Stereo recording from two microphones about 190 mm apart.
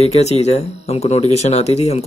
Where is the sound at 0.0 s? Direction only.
35° left (ahead or behind).